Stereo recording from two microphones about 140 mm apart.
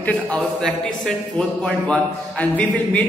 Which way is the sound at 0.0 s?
5° left (ahead or behind).